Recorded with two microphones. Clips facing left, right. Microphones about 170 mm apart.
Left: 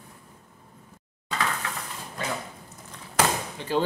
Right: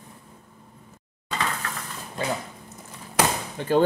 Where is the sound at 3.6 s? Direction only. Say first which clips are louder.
Right 11 dB; 50° right (ahead or behind).